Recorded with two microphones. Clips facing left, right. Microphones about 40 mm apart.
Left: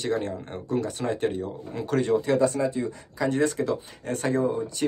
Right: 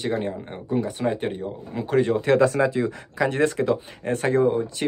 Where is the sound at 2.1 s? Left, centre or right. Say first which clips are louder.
Right 2 dB; right.